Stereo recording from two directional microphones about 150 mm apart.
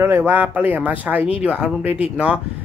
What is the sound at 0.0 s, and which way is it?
Speech, 15° right (ahead or behind).